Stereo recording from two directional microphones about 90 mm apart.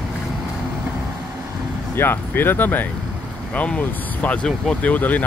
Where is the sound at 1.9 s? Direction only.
25° left (ahead or behind).